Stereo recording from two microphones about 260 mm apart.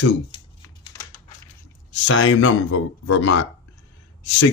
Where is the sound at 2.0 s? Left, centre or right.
Left.